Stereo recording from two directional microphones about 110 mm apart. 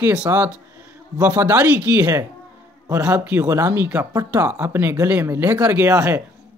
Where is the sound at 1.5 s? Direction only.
15° right (ahead or behind).